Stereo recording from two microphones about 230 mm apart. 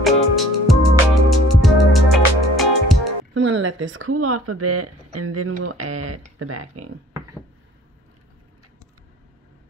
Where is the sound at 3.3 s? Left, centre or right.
Right.